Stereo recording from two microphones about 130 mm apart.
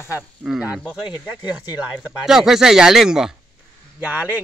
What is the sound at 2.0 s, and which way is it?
Speech, 5° right (ahead or behind).